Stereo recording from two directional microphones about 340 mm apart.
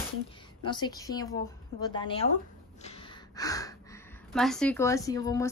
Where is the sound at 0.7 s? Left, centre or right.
Centre.